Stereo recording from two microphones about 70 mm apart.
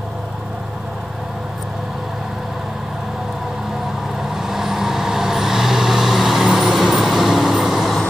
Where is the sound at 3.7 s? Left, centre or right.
Centre.